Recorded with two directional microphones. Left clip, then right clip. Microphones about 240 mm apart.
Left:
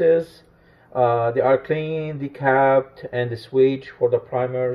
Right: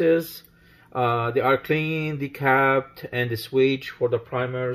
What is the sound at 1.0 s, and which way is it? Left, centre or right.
Speech, right.